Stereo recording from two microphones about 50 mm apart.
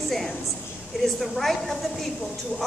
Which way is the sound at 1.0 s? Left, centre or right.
Centre.